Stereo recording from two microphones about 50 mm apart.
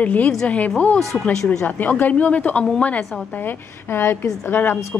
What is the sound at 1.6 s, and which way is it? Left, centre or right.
Speech, left.